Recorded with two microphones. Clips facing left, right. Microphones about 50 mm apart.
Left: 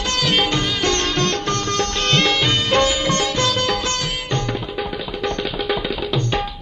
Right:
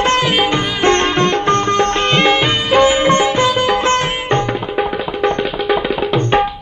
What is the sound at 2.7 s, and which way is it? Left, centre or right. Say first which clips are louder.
Sitar: right 9 dB; right.